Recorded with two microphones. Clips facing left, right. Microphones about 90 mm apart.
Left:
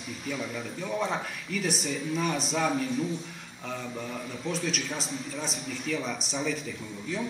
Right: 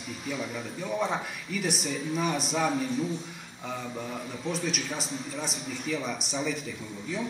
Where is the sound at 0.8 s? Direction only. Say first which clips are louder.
Right 1 dB; centre (ahead or behind).